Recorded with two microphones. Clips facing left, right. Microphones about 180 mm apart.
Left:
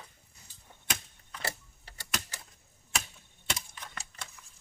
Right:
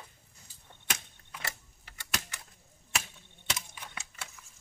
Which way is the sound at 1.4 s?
35° left (ahead or behind).